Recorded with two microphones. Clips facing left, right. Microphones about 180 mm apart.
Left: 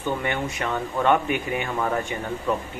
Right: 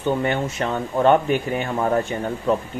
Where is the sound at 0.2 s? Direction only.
30° right (ahead or behind).